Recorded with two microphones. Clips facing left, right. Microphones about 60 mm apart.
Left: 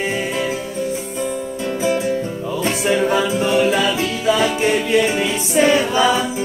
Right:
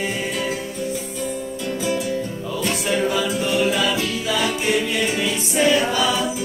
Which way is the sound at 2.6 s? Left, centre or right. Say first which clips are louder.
Left 4 dB; left.